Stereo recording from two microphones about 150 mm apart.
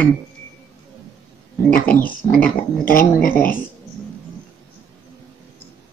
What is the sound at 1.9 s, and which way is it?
Speech, 10° left (ahead or behind).